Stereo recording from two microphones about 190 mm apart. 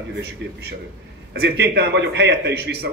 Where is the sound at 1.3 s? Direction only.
60° right (ahead or behind).